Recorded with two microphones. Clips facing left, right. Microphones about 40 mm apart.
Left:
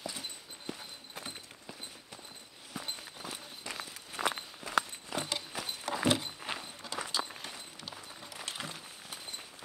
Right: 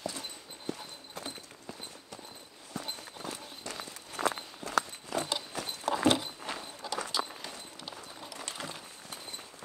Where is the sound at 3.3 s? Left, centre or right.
Centre.